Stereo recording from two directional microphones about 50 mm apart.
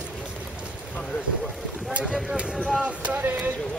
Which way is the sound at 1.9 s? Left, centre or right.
Right.